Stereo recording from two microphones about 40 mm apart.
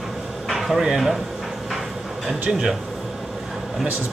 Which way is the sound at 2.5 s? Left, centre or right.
Centre.